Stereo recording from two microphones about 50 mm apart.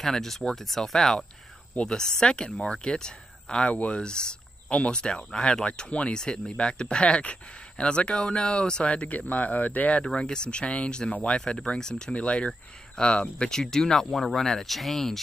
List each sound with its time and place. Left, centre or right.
0.0 s speech: centre